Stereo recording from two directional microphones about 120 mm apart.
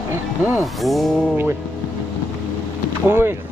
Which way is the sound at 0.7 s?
Centre (ahead or behind).